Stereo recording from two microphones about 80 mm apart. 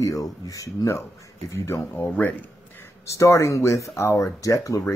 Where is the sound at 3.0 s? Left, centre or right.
Left.